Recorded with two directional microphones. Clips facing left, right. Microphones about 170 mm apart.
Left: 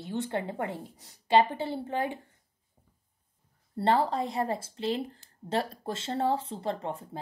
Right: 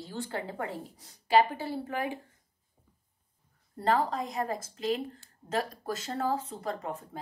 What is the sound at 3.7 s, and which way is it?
A woman's voice, 30° left (ahead or behind).